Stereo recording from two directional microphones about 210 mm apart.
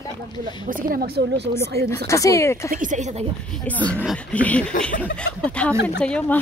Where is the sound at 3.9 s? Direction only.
Centre (ahead or behind).